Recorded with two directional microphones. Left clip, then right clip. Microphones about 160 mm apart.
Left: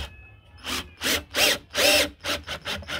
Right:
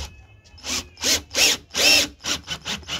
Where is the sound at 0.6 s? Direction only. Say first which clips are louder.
Right 3 dB; 15° left (ahead or behind).